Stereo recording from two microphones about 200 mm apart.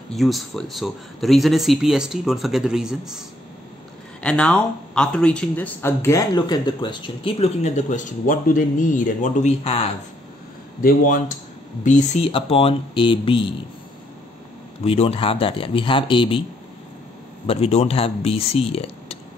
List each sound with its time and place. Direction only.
0.1 s speech: centre (ahead or behind)
4.2 s speech: 5° left (ahead or behind); by 9.8 s 30° left (ahead or behind)
10.8 s speech: 45° left (ahead or behind); by 13.6 s 25° left (ahead or behind)
14.9 s speech: 30° left (ahead or behind)
17.5 s speech: 30° left (ahead or behind)